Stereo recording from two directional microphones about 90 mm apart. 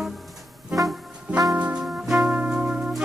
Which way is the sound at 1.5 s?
15° right (ahead or behind).